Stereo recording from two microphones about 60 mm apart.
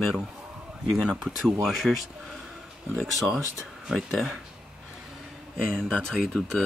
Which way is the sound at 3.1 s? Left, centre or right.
Centre.